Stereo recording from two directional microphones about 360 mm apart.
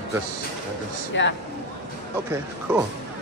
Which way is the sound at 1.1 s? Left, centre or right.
Left.